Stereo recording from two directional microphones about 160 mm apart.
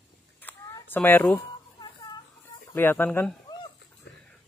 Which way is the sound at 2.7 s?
15° left (ahead or behind).